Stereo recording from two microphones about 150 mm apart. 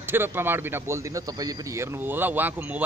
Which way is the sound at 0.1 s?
15° right (ahead or behind).